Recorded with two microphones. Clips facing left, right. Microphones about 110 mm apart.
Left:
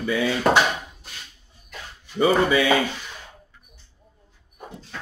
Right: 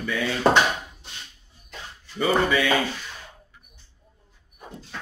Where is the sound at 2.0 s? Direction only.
15° left (ahead or behind).